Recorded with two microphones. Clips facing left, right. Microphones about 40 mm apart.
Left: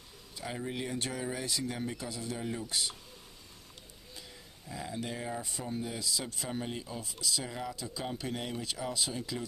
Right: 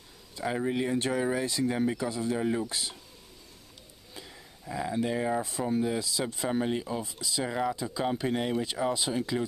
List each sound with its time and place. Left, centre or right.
0.4 s speech: right
4.1 s a sound: right
5.8 s speech: right